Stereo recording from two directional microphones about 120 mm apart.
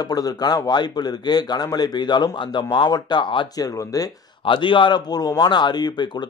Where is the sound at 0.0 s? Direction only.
30° left (ahead or behind).